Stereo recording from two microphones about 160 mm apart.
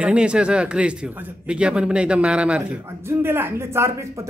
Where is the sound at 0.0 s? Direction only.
5° right (ahead or behind).